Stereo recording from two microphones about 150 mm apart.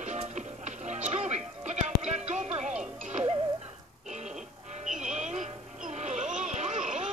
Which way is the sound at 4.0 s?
50° right (ahead or behind).